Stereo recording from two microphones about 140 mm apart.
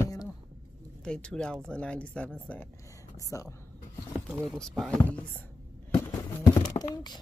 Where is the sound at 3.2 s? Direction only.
25° left (ahead or behind).